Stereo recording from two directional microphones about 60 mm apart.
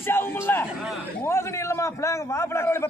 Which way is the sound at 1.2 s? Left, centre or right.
Left.